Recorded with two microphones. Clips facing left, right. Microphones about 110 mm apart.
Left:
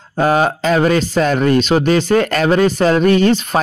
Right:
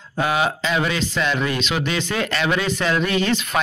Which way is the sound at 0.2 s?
40° left (ahead or behind).